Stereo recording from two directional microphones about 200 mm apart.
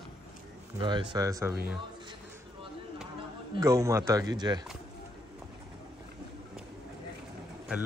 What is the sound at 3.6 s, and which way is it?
Speech, 15° right (ahead or behind).